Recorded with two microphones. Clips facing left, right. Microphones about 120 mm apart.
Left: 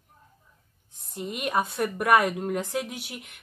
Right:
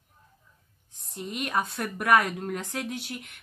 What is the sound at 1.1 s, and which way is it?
Speech, 5° left (ahead or behind).